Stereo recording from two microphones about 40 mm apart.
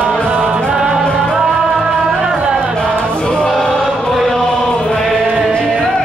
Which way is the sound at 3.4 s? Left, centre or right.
Centre.